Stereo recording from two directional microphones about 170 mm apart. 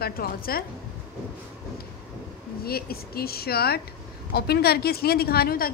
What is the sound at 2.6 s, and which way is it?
A woman's voice, 65° left (ahead or behind).